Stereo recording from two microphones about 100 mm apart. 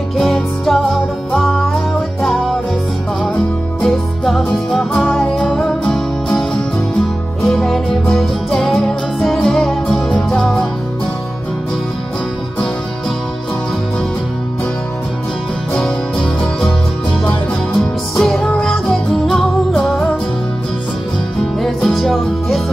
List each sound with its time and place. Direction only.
0.2 s music: centre (ahead or behind)
3.8 s music: 5° left (ahead or behind)
15.7 s music: 5° left (ahead or behind)
17.7 s music: 5° left (ahead or behind)
21.5 s music: centre (ahead or behind)